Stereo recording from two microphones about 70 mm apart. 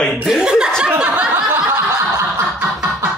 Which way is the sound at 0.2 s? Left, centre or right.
Centre.